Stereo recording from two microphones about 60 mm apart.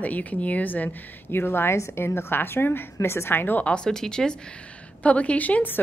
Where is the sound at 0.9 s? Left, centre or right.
Left.